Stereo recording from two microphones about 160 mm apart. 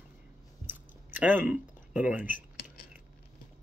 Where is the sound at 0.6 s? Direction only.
10° right (ahead or behind).